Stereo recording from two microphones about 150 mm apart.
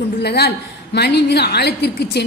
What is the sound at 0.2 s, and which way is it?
A woman's voice, 90° left.